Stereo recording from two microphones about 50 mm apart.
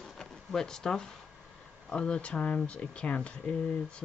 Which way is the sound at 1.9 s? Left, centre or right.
Left.